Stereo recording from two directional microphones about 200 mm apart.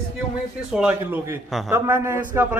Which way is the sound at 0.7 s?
5° right (ahead or behind).